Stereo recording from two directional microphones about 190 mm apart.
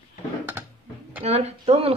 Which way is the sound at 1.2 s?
35° right (ahead or behind).